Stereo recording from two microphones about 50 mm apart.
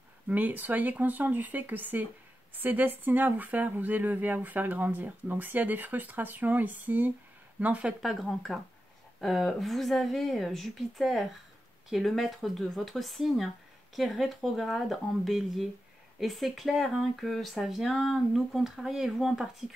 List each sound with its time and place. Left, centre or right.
0.3 s speech: right
8.0 s speech: centre